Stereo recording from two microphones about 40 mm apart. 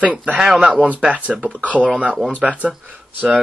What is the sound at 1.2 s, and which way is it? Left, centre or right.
Speech, right.